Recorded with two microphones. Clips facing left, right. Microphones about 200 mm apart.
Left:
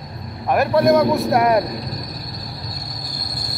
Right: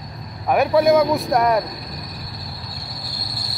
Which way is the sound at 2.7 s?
45° left (ahead or behind).